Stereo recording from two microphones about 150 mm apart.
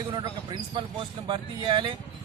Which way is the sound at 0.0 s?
30° right (ahead or behind).